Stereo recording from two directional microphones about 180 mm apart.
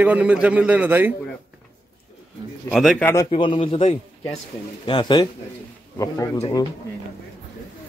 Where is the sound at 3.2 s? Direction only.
30° left (ahead or behind).